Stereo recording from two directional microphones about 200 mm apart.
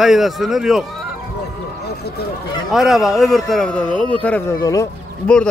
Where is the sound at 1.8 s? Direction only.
55° left (ahead or behind).